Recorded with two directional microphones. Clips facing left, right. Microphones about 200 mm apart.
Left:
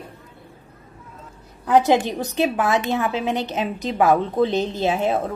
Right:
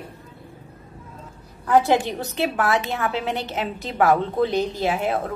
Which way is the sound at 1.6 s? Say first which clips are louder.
Left 2 dB; 20° left (ahead or behind).